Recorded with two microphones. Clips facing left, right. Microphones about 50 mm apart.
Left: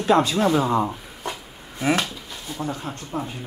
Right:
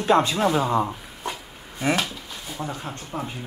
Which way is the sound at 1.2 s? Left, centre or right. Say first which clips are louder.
Even; centre.